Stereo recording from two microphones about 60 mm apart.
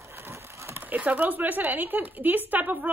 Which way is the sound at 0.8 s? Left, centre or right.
Right.